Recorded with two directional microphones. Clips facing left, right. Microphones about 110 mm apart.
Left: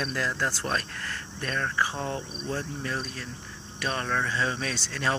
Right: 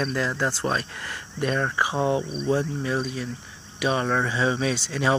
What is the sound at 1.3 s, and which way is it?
Speech, 20° right (ahead or behind).